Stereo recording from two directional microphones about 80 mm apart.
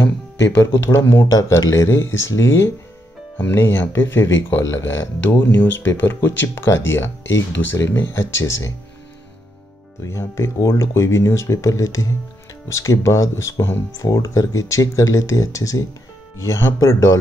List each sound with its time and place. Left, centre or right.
0.6 s speech: left
10.0 s speech: left
14.0 s speech: left